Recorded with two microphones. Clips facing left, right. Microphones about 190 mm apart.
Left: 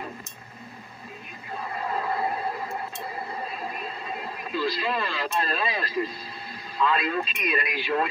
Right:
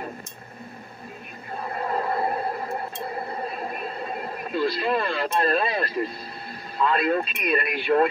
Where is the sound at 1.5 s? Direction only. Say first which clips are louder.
Right 3 dB; 50° right (ahead or behind).